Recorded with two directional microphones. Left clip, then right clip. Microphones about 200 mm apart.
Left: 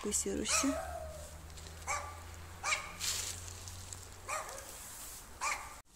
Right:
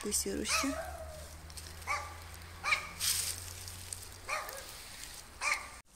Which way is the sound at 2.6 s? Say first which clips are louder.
Right 3 dB; 70° left (ahead or behind).